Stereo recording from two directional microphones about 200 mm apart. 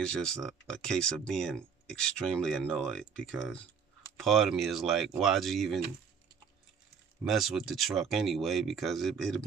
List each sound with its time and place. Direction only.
0.0 s speech: 5° left (ahead or behind)
7.2 s speech: centre (ahead or behind)